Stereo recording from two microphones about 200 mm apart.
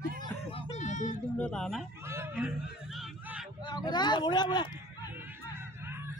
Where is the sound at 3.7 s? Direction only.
20° left (ahead or behind).